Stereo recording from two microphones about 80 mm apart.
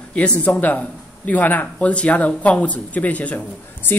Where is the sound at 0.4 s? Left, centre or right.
Centre.